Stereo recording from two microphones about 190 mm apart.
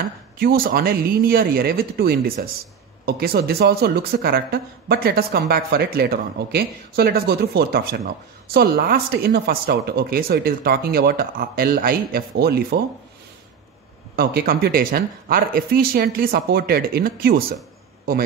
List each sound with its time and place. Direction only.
0.4 s speech: 50° right (ahead or behind)
14.1 s speech: 50° right (ahead or behind)